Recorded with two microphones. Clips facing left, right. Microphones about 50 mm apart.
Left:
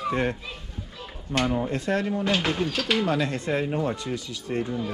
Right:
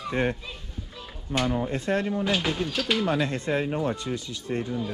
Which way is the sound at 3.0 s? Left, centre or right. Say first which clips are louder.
Even; right.